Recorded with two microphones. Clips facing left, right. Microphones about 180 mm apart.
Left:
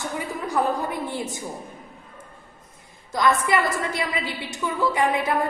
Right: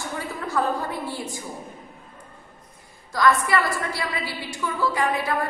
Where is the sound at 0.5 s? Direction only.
15° left (ahead or behind).